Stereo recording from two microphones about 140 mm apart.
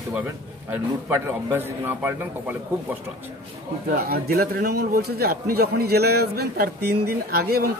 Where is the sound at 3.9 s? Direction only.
90° right.